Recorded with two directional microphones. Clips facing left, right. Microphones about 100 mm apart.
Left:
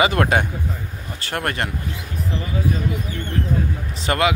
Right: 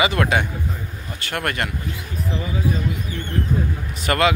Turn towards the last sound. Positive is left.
turn(degrees=20)  # may be behind; listen again after turning